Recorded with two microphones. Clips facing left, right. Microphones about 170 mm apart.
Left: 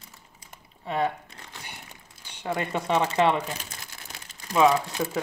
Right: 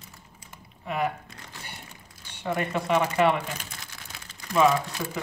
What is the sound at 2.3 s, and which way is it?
Speech, 20° left (ahead or behind).